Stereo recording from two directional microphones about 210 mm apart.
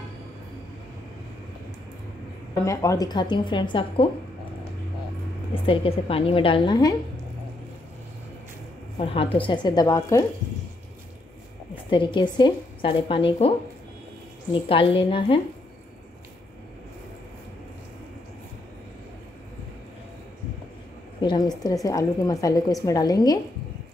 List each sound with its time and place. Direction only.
2.6 s a woman's voice: 15° left (ahead or behind)
5.5 s a woman's voice: 25° left (ahead or behind)
8.9 s a woman's voice: 25° left (ahead or behind)
11.9 s a woman's voice: 25° left (ahead or behind)
14.5 s a woman's voice: 25° left (ahead or behind)
21.2 s a woman's voice: 20° left (ahead or behind)